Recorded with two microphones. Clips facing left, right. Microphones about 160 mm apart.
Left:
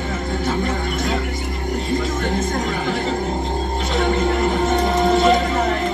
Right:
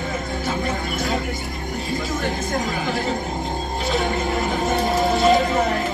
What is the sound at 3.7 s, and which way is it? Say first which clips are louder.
Music: left 2 dB; centre (ahead or behind).